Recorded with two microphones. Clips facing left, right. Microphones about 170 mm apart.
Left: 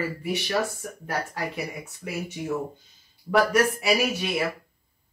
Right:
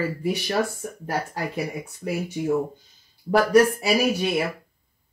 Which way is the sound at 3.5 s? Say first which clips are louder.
Right 5 dB; 35° right (ahead or behind).